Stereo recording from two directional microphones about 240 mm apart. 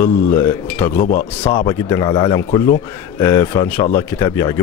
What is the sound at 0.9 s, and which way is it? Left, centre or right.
Speech, left.